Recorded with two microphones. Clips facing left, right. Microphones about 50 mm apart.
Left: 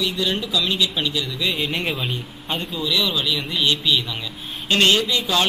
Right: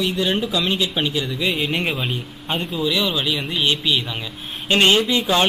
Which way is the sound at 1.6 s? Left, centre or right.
Centre.